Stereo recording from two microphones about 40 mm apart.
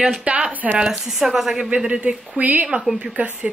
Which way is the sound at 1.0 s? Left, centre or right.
Centre.